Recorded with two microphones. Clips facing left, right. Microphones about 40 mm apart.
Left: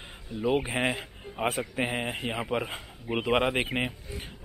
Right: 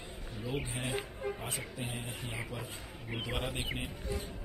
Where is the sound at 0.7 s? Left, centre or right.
Left.